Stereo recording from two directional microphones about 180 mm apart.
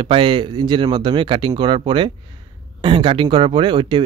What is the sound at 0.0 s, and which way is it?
Speech, 30° right (ahead or behind).